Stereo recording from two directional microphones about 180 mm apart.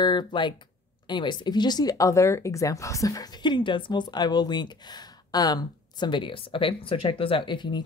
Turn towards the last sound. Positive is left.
turn(degrees=25)  # may be behind; listen again after turning